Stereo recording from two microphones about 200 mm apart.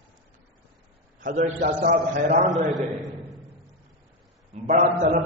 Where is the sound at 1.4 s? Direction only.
45° right (ahead or behind).